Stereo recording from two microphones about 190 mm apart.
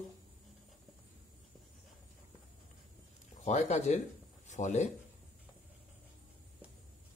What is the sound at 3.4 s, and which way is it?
Speech, 35° left (ahead or behind).